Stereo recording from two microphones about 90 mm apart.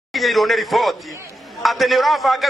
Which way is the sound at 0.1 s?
Centre (ahead or behind).